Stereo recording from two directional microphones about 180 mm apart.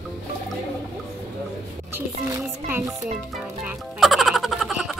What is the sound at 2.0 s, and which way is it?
Speech, 15° right (ahead or behind).